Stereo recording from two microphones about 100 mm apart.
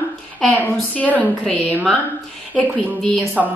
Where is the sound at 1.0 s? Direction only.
15° left (ahead or behind).